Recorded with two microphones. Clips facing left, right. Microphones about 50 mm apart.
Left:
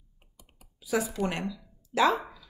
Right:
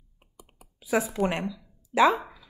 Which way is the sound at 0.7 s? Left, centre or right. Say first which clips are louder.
Right 3 dB; right.